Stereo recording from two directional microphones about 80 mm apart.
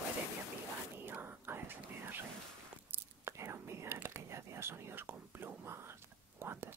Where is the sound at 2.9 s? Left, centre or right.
Right.